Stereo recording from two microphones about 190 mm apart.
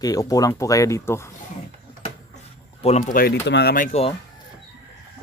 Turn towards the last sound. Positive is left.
turn(degrees=45)  # may be behind; listen again after turning